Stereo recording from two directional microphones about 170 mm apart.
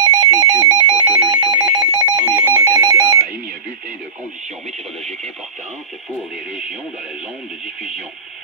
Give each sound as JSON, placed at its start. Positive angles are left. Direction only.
{"t": 0.0, "sound": "telephone", "side_deg": -20}